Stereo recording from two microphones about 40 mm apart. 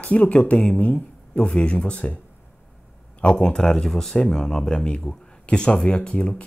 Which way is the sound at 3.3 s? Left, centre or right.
Centre.